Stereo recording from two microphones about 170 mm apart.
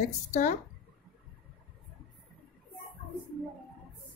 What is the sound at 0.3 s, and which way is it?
Speech, 45° left (ahead or behind).